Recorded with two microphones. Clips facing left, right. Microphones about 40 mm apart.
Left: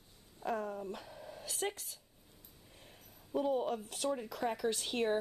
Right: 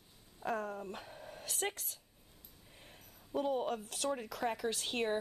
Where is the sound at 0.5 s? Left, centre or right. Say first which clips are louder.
Left 1 dB; right.